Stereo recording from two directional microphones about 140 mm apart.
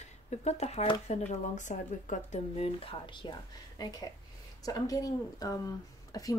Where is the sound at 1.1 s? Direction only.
55° left (ahead or behind).